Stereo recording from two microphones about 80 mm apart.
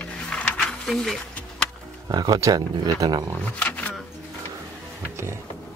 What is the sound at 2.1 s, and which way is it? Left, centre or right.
Speech, right.